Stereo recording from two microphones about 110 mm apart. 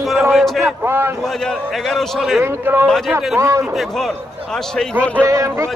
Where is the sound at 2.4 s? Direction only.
20° right (ahead or behind).